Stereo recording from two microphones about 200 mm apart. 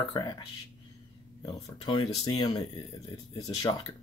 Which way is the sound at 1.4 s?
20° left (ahead or behind).